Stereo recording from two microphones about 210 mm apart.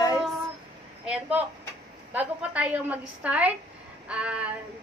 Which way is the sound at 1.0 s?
5° right (ahead or behind).